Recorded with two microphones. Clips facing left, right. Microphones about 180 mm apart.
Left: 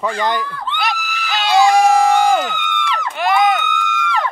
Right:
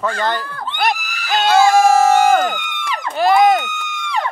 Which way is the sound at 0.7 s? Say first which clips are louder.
Right 4 dB; 50° right (ahead or behind).